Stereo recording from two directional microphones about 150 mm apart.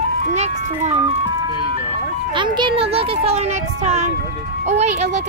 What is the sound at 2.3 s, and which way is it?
A child's voice, 30° right (ahead or behind).